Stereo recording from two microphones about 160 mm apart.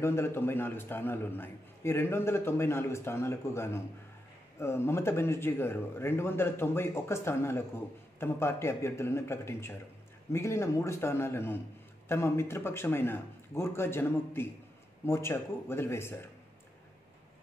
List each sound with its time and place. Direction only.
0.0 s a man's voice: 15° left (ahead or behind)